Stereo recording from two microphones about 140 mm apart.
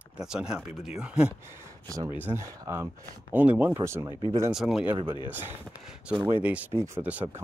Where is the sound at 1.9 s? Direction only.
25° right (ahead or behind).